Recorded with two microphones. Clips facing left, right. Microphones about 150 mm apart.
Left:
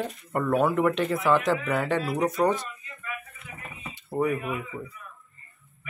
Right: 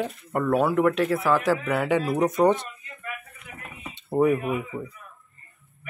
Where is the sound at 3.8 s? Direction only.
25° right (ahead or behind).